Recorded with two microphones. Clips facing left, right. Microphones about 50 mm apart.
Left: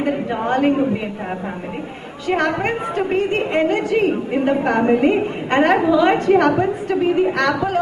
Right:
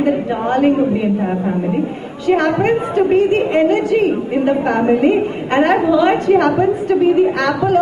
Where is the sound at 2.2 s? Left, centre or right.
Left.